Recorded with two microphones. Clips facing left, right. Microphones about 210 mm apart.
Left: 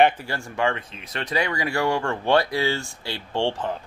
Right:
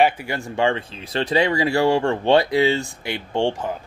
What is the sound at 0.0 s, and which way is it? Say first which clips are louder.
Speech: even; 15° right (ahead or behind).